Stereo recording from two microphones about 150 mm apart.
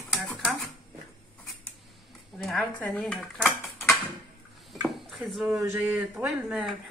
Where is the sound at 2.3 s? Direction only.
Centre (ahead or behind).